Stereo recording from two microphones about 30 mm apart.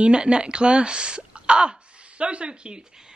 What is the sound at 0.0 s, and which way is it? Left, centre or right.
Speech, right.